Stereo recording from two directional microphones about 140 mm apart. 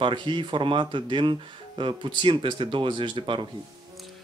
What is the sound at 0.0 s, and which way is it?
Speech, 35° right (ahead or behind).